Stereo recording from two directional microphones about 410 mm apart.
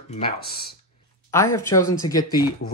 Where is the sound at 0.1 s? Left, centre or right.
Centre.